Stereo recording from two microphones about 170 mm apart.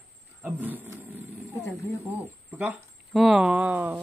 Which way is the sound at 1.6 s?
15° left (ahead or behind).